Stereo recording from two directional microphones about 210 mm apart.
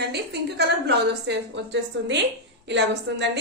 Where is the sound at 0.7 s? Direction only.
55° right (ahead or behind).